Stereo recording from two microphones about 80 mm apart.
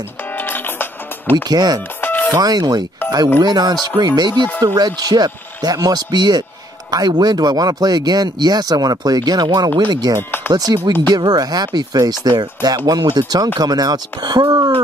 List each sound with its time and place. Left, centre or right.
0.4 s music: left
1.3 s speech: right
2.0 s music: left
2.3 s speech: right